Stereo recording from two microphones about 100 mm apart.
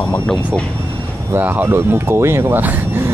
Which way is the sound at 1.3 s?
20° right (ahead or behind).